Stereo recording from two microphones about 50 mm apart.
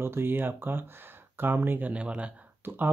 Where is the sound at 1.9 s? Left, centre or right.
Right.